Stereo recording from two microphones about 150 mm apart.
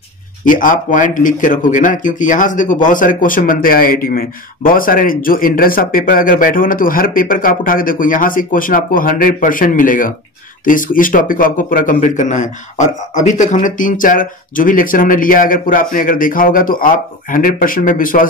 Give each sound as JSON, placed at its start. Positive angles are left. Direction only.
{"t": 0.5, "sound": "a man's voice", "side_deg": 60}